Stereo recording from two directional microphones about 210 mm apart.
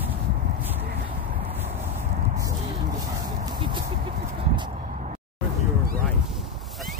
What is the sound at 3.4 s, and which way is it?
Music, 25° right (ahead or behind).